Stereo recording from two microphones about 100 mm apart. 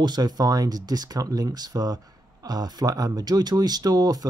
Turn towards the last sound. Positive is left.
turn(degrees=-40)  # may be behind; listen again after turning